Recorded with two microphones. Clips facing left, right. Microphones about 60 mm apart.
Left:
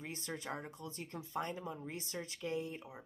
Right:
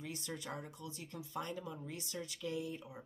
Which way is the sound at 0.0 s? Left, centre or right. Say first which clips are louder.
Left 1 dB; left.